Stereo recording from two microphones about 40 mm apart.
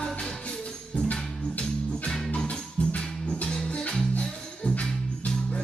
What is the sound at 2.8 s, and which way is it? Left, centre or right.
Music, left.